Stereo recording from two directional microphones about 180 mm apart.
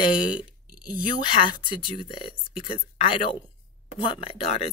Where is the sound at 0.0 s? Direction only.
25° left (ahead or behind).